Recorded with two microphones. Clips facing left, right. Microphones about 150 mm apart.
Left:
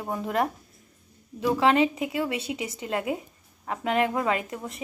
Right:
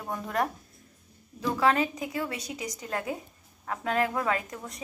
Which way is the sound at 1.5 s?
25° left (ahead or behind).